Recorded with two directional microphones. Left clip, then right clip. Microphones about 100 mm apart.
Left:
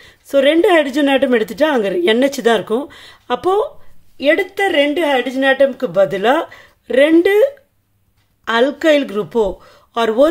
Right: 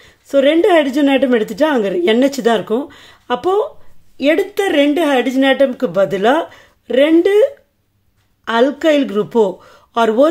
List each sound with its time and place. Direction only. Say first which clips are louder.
0.0 s a woman's voice: even; centre (ahead or behind)
4.2 s speech: even; 35° right (ahead or behind)
5.7 s speech: even; 20° right (ahead or behind); by 9.4 s 5° right (ahead or behind)
9.4 s speech: right 2 dB; 20° right (ahead or behind)